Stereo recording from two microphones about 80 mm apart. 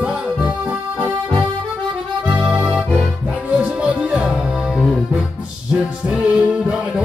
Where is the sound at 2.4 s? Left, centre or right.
Centre.